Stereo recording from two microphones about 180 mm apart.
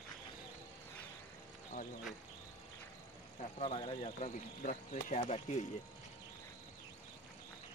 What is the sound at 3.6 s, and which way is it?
Speech, 30° left (ahead or behind).